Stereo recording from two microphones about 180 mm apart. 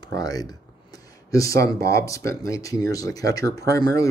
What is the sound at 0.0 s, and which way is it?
Speech, 20° left (ahead or behind).